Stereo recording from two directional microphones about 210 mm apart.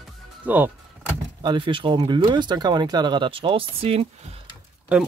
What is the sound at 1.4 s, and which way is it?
Speech, 20° right (ahead or behind).